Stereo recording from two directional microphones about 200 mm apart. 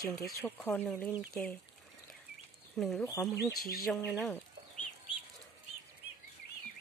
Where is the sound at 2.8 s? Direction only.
Centre (ahead or behind).